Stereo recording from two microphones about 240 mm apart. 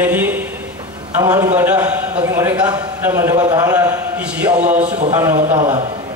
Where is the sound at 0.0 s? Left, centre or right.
Centre.